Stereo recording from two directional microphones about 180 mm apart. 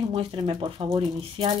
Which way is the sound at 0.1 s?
30° right (ahead or behind).